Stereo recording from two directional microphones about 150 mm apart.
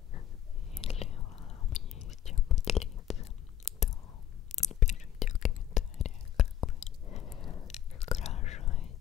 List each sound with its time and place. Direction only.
0.7 s whispering: 45° left (ahead or behind)
1.9 s whispering: centre (ahead or behind)
2.5 s chewing: 45° left (ahead or behind)
4.6 s whispering: 50° left (ahead or behind)
6.8 s chewing: 50° left (ahead or behind)
7.3 s chewing: 30° left (ahead or behind)
7.6 s chewing: 45° left (ahead or behind)